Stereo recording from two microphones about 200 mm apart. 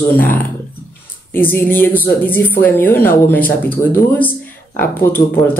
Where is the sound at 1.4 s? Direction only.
10° left (ahead or behind).